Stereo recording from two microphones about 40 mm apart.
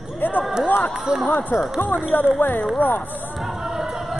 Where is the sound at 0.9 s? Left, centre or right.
Centre.